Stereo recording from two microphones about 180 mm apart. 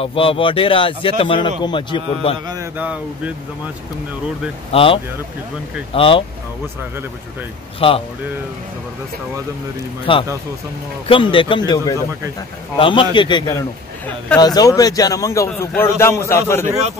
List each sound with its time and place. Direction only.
0.0 s a man's voice: 30° left (ahead or behind)
2.8 s speech: 10° right (ahead or behind)
4.7 s speech: 30° left (ahead or behind)
7.8 s a man's voice: 30° left (ahead or behind)
10.1 s a man's voice: 30° left (ahead or behind)